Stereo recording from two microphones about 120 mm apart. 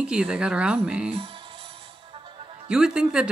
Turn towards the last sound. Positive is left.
turn(degrees=-5)  # may be behind; listen again after turning